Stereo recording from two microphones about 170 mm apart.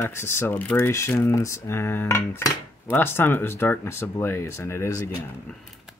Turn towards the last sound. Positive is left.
turn(degrees=15)  # may be behind; listen again after turning